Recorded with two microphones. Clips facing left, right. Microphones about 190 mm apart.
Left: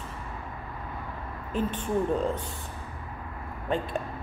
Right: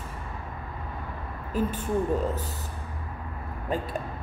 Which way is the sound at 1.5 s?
10° right (ahead or behind).